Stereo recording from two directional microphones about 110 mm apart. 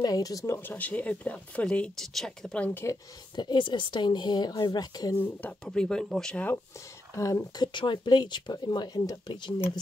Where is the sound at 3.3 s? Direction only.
45° left (ahead or behind).